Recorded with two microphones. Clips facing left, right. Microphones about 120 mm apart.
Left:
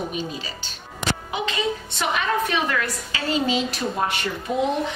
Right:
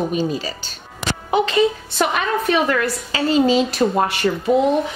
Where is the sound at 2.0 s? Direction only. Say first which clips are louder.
Right 6 dB; 50° right (ahead or behind).